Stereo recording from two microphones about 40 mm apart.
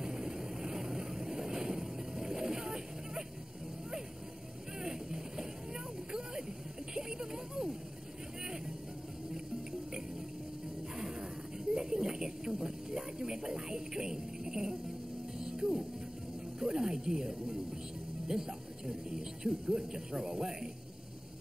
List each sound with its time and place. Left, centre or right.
0.0 s vehicle: centre
4.8 s music: centre
6.9 s a sound: centre
11.0 s music: centre
11.7 s a sound: centre
15.4 s music: centre
16.5 s snake: centre
18.3 s music: centre
18.9 s a sound: centre
19.7 s speech: centre